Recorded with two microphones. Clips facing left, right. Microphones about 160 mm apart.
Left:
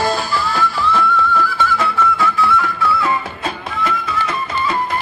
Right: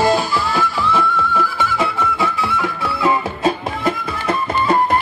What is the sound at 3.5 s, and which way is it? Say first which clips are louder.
Music: right 4 dB; 45° right (ahead or behind).